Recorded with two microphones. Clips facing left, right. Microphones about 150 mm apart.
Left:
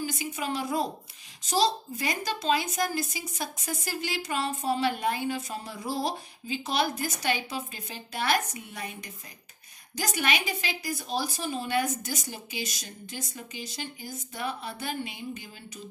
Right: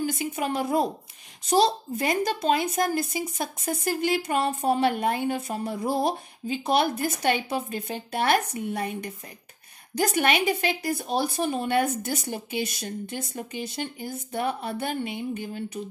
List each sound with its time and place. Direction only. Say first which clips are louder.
0.0 s a woman's voice: right 5 dB; 55° right (ahead or behind)